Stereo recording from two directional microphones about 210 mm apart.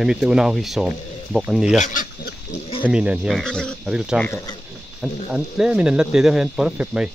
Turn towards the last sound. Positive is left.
turn(degrees=-5)  # may be behind; listen again after turning